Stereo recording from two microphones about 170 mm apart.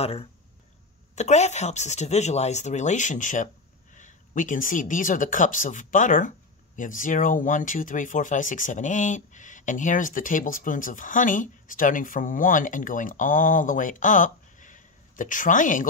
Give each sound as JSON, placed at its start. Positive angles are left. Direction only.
{"t": 0.0, "sound": "speech", "side_deg": 35}